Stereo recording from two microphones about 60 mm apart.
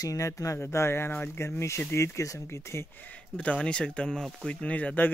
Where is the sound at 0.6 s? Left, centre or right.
Left.